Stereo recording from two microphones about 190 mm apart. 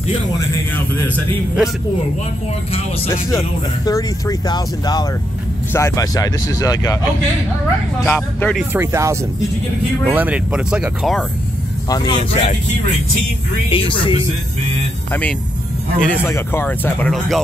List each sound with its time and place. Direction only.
3.1 s speech: 15° left (ahead or behind)
8.0 s speech: 10° left (ahead or behind)
8.7 s speech: 15° right (ahead or behind)
11.9 s speech: 25° left (ahead or behind)
13.7 s speech: 25° left (ahead or behind)
15.0 s speech: 10° left (ahead or behind)